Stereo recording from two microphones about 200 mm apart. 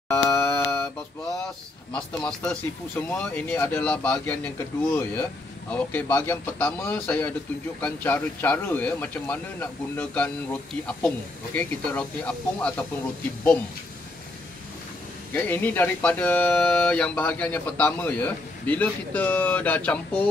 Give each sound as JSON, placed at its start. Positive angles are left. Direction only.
{"t": 0.1, "sound": "mantra", "side_deg": 15}
{"t": 1.4, "sound": "speech", "side_deg": 5}
{"t": 15.3, "sound": "speech", "side_deg": 10}